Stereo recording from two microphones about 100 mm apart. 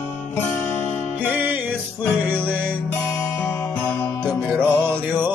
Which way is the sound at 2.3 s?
20° right (ahead or behind).